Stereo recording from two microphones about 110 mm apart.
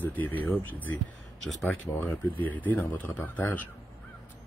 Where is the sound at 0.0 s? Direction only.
15° left (ahead or behind).